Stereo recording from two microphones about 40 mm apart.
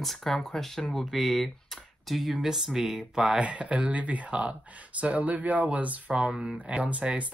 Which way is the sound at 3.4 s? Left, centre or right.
Right.